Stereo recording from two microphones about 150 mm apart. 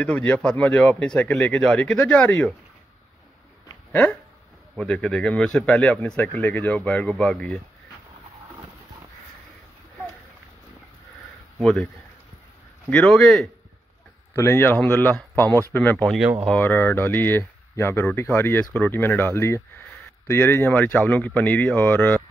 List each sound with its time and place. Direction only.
0.0 s speech: 10° left (ahead or behind)
3.9 s speech: 10° left (ahead or behind)
11.6 s speech: 5° left (ahead or behind)
12.9 s speech: 5° left (ahead or behind)
14.3 s speech: 15° left (ahead or behind)